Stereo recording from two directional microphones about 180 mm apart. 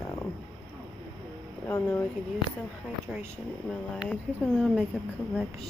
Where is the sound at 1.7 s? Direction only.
10° left (ahead or behind).